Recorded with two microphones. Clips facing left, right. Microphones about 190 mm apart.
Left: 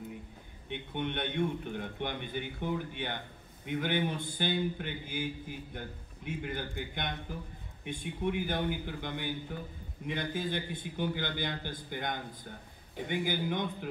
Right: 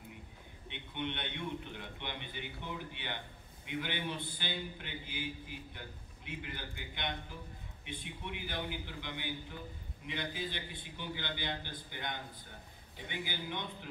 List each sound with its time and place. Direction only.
0.7 s a man's voice: 50° left (ahead or behind)